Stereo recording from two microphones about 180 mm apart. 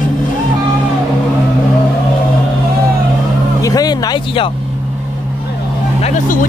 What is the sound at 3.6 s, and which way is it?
Music, 20° left (ahead or behind).